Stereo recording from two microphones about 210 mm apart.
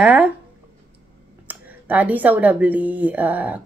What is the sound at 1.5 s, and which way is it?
Speech, 5° right (ahead or behind).